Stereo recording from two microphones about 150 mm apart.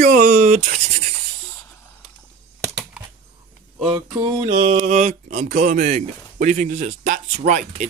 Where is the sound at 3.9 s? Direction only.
40° right (ahead or behind).